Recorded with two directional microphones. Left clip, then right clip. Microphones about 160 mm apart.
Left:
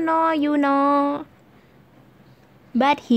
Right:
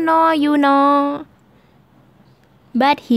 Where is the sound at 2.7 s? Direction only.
15° right (ahead or behind).